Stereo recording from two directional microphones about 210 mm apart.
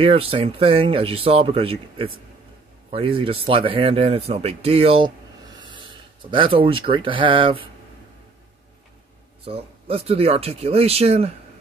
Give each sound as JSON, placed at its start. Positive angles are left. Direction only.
{"t": 0.0, "sound": "speech", "side_deg": -25}
{"t": 6.3, "sound": "speech", "side_deg": -25}
{"t": 9.4, "sound": "speech", "side_deg": -25}